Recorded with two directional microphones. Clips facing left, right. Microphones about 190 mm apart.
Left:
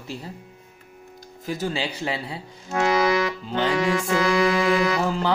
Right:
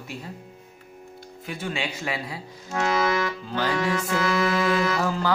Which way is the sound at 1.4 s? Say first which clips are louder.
Left 4 dB; 40° left (ahead or behind).